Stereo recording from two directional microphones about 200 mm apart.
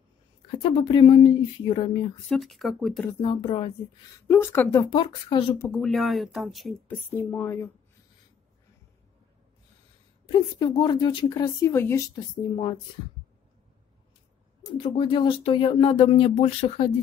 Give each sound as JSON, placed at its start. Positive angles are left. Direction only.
{"t": 0.6, "sound": "speech", "side_deg": 25}
{"t": 2.2, "sound": "speech", "side_deg": 0}
{"t": 3.2, "sound": "speech", "side_deg": 25}
{"t": 4.3, "sound": "speech", "side_deg": 10}
{"t": 4.8, "sound": "speech", "side_deg": 25}
{"t": 5.6, "sound": "speech", "side_deg": 5}
{"t": 10.2, "sound": "speech", "side_deg": 20}
{"t": 14.8, "sound": "speech", "side_deg": 25}